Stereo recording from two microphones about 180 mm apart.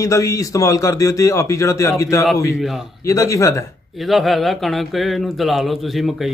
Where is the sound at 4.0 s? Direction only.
Centre (ahead or behind).